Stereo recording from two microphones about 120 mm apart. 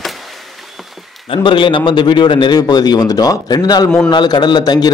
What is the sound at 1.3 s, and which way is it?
A man's voice, 45° left (ahead or behind).